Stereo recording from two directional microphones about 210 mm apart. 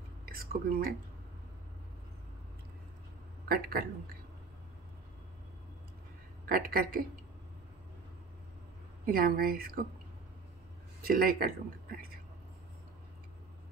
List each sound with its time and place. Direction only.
0.2 s a sound: 45° right (ahead or behind)
3.4 s a woman's voice: 45° right (ahead or behind)
6.5 s a woman's voice: 45° right (ahead or behind)
9.0 s a woman's voice: 45° right (ahead or behind)
11.1 s a woman's voice: 45° right (ahead or behind)